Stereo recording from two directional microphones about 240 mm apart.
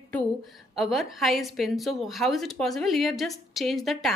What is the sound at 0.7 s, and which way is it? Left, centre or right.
A woman's voice, centre.